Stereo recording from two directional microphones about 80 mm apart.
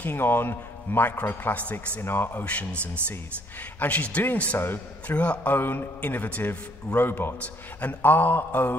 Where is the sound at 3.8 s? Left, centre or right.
Left.